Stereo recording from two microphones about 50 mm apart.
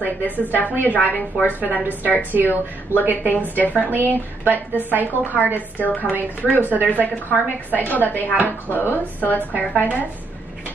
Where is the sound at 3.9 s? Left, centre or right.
Right.